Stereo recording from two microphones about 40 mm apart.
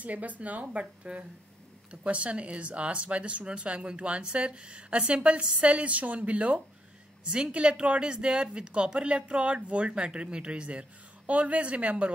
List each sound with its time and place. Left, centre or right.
0.0 s a woman's voice: right